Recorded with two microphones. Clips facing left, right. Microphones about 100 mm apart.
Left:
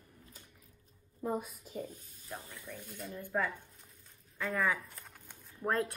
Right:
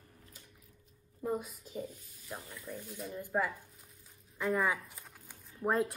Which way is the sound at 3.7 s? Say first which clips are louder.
Right 1 dB; 5° right (ahead or behind).